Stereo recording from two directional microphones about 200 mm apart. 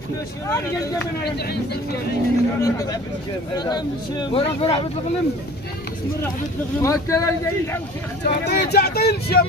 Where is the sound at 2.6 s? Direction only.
15° left (ahead or behind).